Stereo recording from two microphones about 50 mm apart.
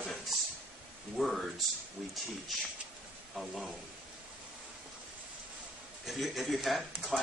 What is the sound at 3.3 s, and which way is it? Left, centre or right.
Speech, centre.